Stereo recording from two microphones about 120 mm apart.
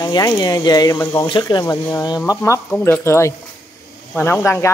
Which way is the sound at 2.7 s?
15° left (ahead or behind).